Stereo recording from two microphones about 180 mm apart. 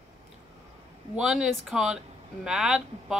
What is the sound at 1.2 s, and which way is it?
Speech, 5° right (ahead or behind).